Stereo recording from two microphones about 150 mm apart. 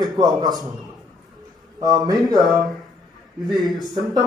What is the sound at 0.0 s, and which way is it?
Speech, 25° right (ahead or behind).